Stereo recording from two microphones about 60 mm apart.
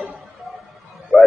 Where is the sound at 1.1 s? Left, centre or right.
Centre.